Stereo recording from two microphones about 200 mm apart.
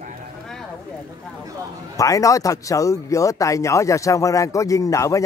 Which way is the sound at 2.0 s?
15° left (ahead or behind).